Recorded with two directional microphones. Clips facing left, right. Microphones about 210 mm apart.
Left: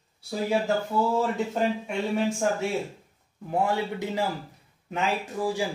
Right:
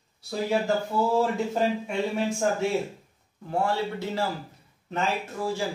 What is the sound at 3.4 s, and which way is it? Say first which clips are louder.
Speech: left 1 dB; 15° left (ahead or behind).